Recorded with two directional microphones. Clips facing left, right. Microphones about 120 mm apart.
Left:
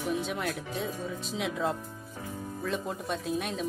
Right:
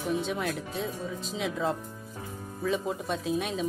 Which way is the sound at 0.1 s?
Centre (ahead or behind).